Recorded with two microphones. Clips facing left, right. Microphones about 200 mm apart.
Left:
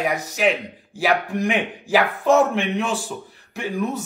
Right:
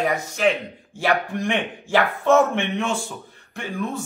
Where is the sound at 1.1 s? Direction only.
5° left (ahead or behind).